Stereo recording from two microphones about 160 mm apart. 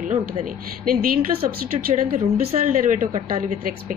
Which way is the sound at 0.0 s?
55° right (ahead or behind).